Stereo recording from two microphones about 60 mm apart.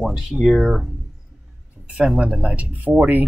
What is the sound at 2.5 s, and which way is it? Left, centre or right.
Speech, right.